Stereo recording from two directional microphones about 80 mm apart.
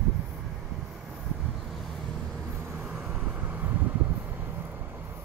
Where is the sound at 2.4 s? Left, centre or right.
Right.